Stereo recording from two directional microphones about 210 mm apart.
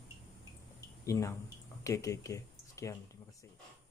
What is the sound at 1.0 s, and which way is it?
Speech, 15° left (ahead or behind).